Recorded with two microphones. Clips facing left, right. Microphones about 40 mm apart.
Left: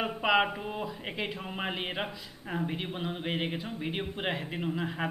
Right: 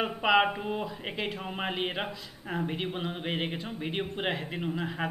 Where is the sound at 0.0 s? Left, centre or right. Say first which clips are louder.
Right 2 dB; centre.